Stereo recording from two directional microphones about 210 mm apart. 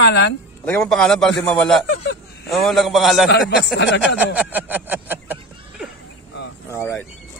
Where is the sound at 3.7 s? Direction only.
55° left (ahead or behind).